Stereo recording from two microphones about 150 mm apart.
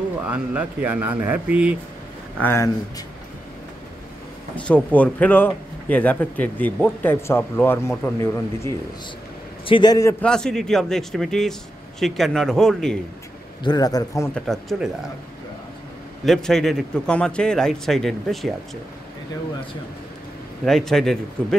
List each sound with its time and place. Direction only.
0.3 s speech: 10° right (ahead or behind)
2.4 s speech: 15° left (ahead or behind)
4.6 s speech: 10° left (ahead or behind)
9.7 s a man's voice: 30° left (ahead or behind)
10.2 s a man's voice: 5° left (ahead or behind)
13.7 s a man's voice: 25° left (ahead or behind)
14.3 s a man's voice: centre (ahead or behind)
16.3 s a man's voice: 5° left (ahead or behind)
20.6 s a man's voice: centre (ahead or behind)